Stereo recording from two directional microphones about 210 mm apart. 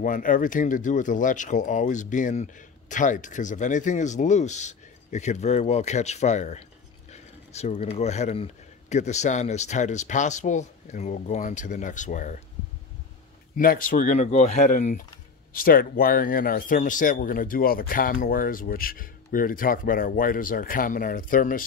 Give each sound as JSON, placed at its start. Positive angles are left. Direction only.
{"t": 0.0, "sound": "speech", "side_deg": 40}
{"t": 13.6, "sound": "speech", "side_deg": 40}